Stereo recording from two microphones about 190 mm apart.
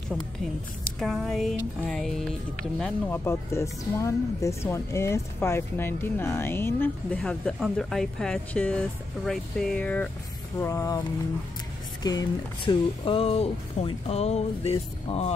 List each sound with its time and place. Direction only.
0.9 s speech: centre (ahead or behind); by 11.0 s 15° left (ahead or behind)
12.0 s speech: 20° left (ahead or behind)